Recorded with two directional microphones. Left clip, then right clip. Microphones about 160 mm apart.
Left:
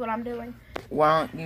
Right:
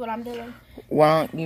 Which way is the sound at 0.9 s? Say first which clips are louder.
Right 3 dB; 65° right (ahead or behind).